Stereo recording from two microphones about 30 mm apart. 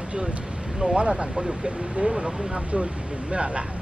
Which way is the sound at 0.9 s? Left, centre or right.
Right.